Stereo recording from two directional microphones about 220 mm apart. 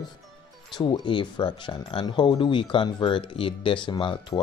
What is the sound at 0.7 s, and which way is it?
Speech, 20° left (ahead or behind).